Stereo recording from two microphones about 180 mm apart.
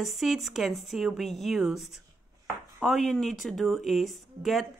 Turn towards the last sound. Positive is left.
turn(degrees=0)  # may be behind; listen again after turning